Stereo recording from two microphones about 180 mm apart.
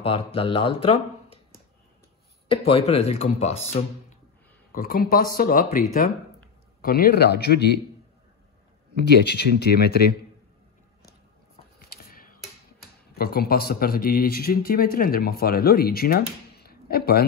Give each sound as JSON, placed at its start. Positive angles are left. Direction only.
{"t": 0.0, "sound": "speech", "side_deg": 30}
{"t": 2.4, "sound": "speech", "side_deg": 30}
{"t": 4.7, "sound": "a man's voice", "side_deg": 55}
{"t": 9.0, "sound": "a man's voice", "side_deg": 65}
{"t": 11.8, "sound": "a sound", "side_deg": 60}
{"t": 13.1, "sound": "a man's voice", "side_deg": 60}